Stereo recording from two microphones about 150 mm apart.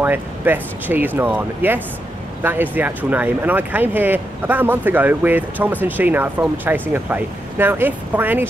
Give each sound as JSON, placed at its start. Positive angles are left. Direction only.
{"t": 0.0, "sound": "speech", "side_deg": -10}